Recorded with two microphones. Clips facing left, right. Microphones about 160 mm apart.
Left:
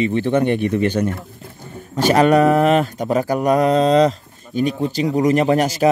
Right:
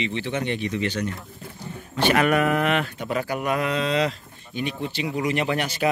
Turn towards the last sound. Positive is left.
turn(degrees=40)  # may be behind; listen again after turning